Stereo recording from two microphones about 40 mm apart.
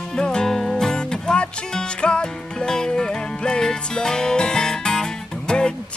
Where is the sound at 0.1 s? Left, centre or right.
Centre.